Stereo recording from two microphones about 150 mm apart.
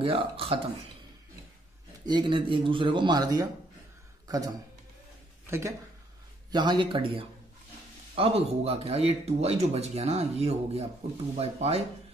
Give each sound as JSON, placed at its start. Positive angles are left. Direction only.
{"t": 0.0, "sound": "speech", "side_deg": -35}
{"t": 2.0, "sound": "speech", "side_deg": -30}
{"t": 5.5, "sound": "speech", "side_deg": -20}
{"t": 6.5, "sound": "speech", "side_deg": -30}